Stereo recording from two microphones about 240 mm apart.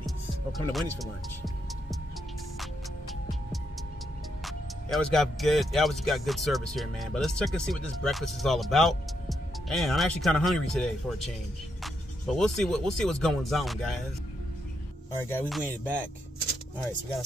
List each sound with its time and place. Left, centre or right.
0.0 s music: centre
4.5 s speech: centre
12.4 s speech: centre
15.1 s speech: centre